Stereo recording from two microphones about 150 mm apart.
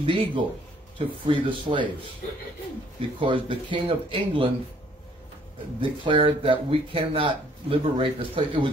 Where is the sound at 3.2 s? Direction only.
35° right (ahead or behind).